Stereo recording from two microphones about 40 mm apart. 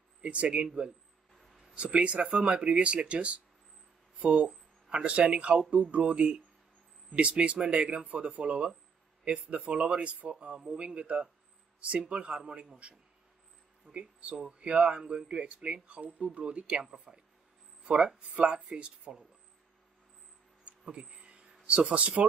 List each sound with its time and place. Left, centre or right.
0.2 s speech: right
1.8 s speech: right
8.1 s speech: right
20.6 s a sound: right